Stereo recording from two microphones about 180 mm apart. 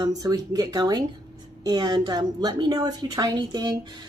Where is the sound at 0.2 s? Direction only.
20° right (ahead or behind).